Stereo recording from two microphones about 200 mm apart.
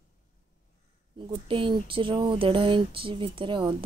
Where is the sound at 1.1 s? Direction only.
25° right (ahead or behind).